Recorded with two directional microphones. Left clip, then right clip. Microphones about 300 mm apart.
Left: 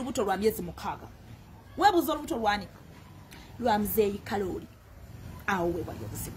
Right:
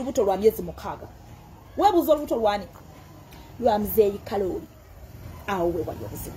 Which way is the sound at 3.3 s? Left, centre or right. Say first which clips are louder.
Right 5 dB; centre.